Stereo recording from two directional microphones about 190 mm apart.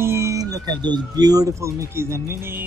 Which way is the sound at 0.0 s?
15° right (ahead or behind).